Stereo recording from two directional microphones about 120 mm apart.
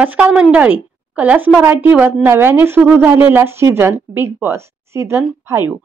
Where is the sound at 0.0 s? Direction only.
10° right (ahead or behind).